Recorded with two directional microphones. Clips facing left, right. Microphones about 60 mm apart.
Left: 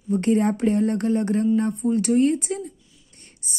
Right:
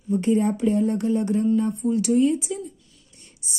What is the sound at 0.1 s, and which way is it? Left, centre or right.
Speech, left.